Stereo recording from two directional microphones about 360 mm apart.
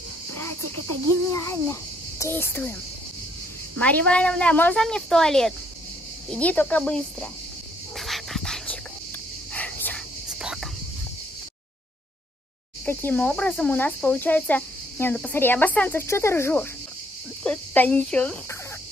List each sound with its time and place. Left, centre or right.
0.3 s cricket: right
1.3 s a child's voice: centre
3.8 s speech: centre
8.0 s dog: centre
9.5 s a sound: centre
12.8 s speech: centre